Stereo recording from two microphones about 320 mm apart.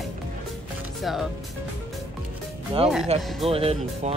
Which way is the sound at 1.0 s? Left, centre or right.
Centre.